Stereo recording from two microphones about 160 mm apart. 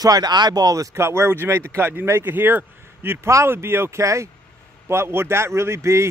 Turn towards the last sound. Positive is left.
turn(degrees=-15)  # may be behind; listen again after turning